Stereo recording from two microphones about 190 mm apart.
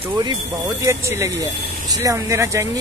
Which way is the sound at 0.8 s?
15° right (ahead or behind).